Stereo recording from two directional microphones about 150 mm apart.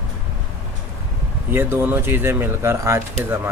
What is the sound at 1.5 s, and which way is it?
Speech, 15° right (ahead or behind).